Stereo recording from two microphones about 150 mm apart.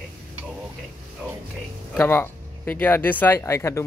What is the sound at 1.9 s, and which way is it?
Speech, 10° left (ahead or behind).